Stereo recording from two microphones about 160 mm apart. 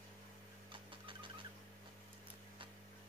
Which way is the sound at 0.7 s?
30° right (ahead or behind).